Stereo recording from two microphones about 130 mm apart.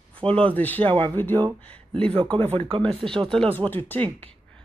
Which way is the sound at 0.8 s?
45° right (ahead or behind).